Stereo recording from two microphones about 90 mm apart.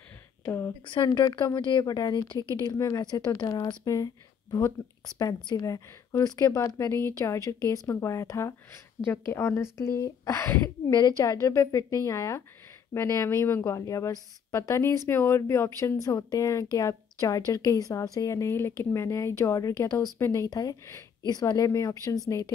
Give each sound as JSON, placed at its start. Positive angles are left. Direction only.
{"t": 0.8, "sound": "a woman's voice", "side_deg": 55}
{"t": 10.9, "sound": "a woman's voice", "side_deg": 50}
{"t": 20.4, "sound": "a woman's voice", "side_deg": 40}